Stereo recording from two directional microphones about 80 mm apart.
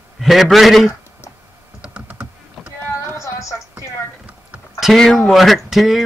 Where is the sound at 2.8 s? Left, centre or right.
Left.